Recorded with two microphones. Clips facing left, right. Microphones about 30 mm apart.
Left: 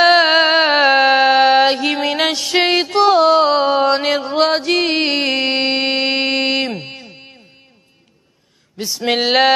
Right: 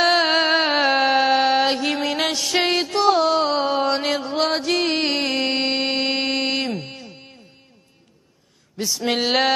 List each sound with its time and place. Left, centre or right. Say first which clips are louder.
0.0 s music: left 6 dB; left
4.2 s mantra: left 6 dB; left
5.1 s music: left 5 dB; centre
5.8 s music: left 5 dB; centre
8.7 s speech: left 4 dB; centre